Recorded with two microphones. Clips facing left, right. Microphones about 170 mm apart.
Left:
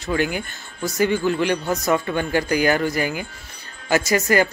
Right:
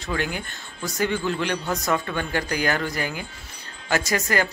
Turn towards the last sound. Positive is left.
turn(degrees=5)  # may be behind; listen again after turning